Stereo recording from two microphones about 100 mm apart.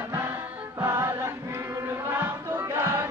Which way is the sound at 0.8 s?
30° right (ahead or behind).